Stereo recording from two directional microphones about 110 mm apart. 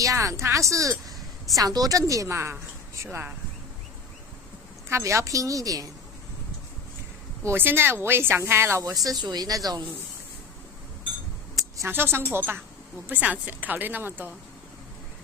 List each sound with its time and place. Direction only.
0.0 s speech: 30° right (ahead or behind)
4.8 s a woman's voice: 25° right (ahead or behind)
7.4 s speech: 20° right (ahead or behind)
11.5 s a sound: 30° right (ahead or behind)
11.9 s a woman's voice: 20° right (ahead or behind)